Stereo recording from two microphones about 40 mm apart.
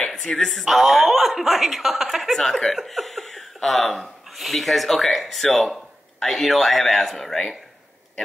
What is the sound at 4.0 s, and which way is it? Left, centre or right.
A man's voice, centre.